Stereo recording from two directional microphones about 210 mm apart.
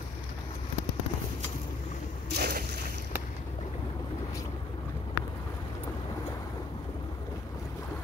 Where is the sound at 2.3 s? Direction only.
50° right (ahead or behind).